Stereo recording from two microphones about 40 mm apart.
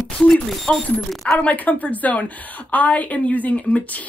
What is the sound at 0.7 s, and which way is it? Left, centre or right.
Speech, left.